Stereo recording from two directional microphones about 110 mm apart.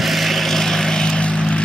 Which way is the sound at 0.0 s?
Centre (ahead or behind).